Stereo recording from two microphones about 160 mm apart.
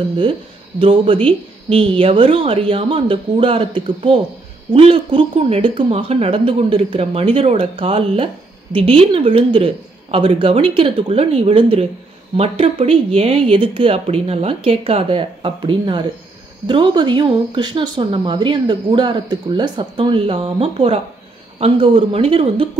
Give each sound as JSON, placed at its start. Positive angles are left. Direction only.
{"t": 0.7, "sound": "speech", "side_deg": -35}